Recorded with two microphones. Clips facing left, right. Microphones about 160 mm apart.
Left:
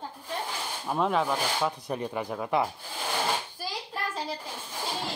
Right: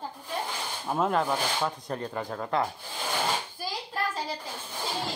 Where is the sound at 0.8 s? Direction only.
Centre (ahead or behind).